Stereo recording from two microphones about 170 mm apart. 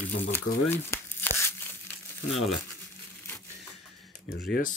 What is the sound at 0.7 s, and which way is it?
Crumpling, 15° left (ahead or behind).